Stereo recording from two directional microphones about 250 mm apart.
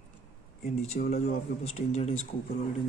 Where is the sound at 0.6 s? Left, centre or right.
Left.